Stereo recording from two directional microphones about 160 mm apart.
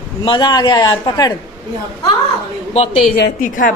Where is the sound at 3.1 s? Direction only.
55° left (ahead or behind).